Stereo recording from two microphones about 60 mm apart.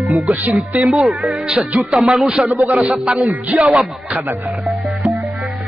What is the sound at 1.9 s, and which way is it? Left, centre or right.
Speech, centre.